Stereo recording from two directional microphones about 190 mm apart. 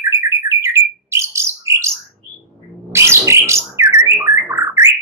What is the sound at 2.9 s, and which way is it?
Bird, 15° right (ahead or behind).